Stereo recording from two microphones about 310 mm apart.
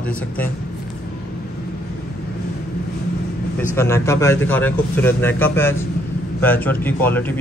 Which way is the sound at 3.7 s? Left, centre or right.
Centre.